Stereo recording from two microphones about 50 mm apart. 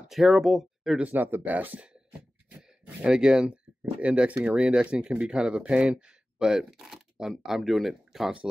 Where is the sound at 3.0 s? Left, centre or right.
Centre.